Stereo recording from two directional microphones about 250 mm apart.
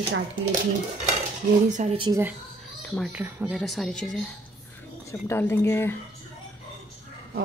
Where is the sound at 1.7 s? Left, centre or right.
Right.